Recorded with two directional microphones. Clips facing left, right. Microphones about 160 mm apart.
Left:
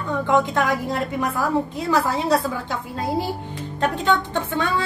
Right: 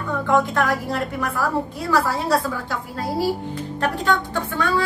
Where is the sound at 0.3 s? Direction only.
20° left (ahead or behind).